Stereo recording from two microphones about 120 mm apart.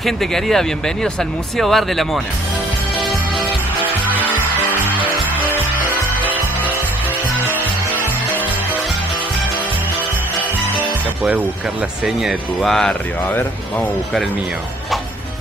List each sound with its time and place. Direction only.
0.0 s speech: 5° left (ahead or behind)
3.0 s music: centre (ahead or behind)
4.1 s music: 15° left (ahead or behind)
5.0 s music: 15° right (ahead or behind)
12.0 s speech: centre (ahead or behind)
13.3 s speech: 15° left (ahead or behind)